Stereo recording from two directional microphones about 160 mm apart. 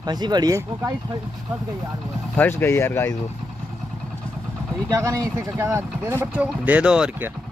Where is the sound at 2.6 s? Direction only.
15° left (ahead or behind).